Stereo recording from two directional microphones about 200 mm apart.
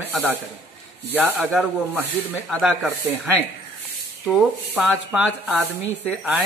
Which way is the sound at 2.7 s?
10° right (ahead or behind).